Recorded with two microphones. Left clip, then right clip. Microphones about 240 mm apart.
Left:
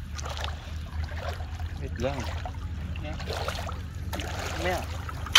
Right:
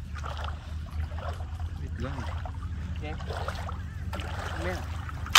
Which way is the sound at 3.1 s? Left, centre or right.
Left.